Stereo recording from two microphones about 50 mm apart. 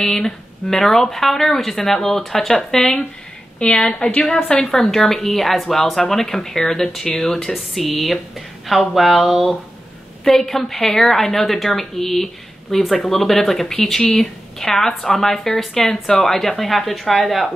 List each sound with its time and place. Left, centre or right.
0.0 s a woman's voice: centre
7.5 s a woman's voice: centre